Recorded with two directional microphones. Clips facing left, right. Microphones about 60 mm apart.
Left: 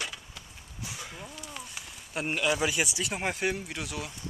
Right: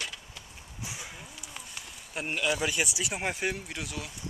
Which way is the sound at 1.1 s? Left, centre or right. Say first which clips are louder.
Left 3 dB; centre.